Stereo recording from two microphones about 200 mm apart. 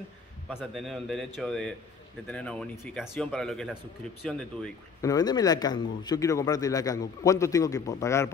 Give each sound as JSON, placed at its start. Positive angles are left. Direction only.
{"t": 0.6, "sound": "speech", "side_deg": 0}
{"t": 5.0, "sound": "a man's voice", "side_deg": 20}